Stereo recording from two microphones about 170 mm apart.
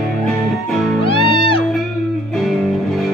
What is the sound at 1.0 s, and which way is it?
Music, 30° left (ahead or behind).